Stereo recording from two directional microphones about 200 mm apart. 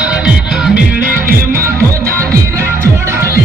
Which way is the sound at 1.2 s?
45° right (ahead or behind).